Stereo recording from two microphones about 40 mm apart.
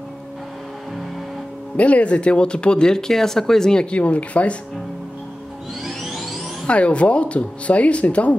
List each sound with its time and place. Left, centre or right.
1.8 s speech: left; by 3.8 s centre
3.8 s speech: left
5.9 s music: centre
6.7 s speech: left